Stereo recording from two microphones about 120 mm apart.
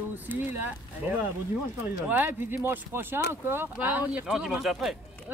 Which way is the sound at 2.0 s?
15° right (ahead or behind).